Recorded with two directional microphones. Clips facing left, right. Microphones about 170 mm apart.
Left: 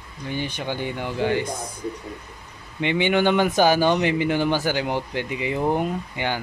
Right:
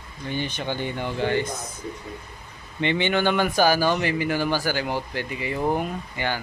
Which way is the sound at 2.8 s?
10° left (ahead or behind).